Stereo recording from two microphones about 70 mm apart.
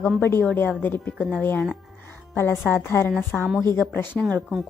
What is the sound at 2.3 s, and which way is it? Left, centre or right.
Speech, left.